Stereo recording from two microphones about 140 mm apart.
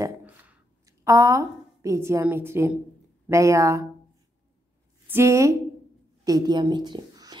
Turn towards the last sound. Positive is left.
turn(degrees=-30)  # may be behind; listen again after turning